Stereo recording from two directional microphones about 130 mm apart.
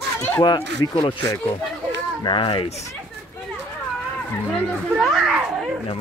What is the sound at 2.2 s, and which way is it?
Speech, 40° left (ahead or behind).